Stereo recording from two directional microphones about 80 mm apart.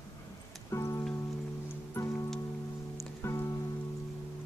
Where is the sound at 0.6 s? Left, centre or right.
Left.